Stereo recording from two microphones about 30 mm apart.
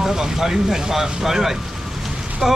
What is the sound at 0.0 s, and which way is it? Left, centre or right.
Speech, centre.